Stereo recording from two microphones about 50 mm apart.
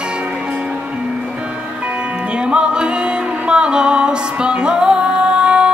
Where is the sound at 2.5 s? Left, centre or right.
Centre.